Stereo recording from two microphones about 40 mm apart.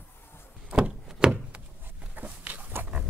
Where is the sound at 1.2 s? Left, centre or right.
Right.